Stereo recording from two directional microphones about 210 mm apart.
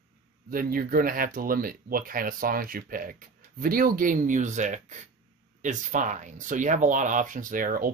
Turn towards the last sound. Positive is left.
turn(degrees=-40)  # may be behind; listen again after turning